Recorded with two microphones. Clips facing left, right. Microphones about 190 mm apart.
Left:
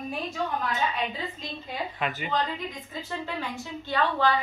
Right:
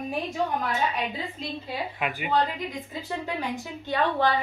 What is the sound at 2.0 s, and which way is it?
Speech, 10° right (ahead or behind).